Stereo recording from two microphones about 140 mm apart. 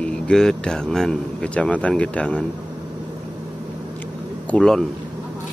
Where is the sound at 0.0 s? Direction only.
5° left (ahead or behind).